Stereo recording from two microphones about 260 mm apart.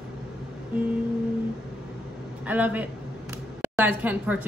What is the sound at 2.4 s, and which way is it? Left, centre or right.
A man's voice, centre.